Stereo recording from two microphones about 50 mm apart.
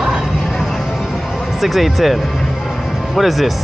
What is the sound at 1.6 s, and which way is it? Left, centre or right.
Speech, centre.